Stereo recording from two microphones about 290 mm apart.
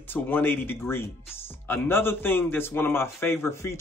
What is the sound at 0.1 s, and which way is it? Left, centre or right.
A man's voice, centre.